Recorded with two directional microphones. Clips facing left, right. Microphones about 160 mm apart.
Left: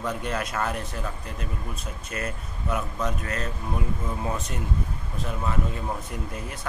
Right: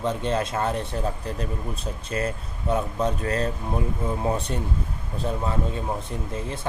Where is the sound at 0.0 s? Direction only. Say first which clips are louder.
Right 4 dB; 25° right (ahead or behind).